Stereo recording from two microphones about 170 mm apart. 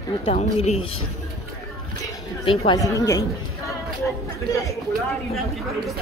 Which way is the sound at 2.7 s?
20° left (ahead or behind).